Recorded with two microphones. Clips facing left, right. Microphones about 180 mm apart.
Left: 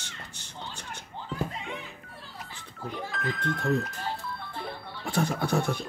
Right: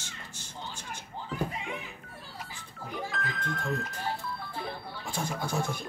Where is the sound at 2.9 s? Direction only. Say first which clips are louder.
Left 1 dB; centre (ahead or behind).